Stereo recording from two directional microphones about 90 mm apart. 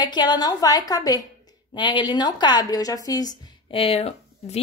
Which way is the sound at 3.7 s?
90° left.